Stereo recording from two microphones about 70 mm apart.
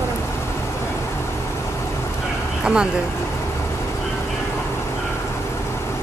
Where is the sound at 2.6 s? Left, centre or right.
Centre.